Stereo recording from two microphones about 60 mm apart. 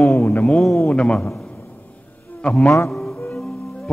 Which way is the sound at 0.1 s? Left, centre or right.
Left.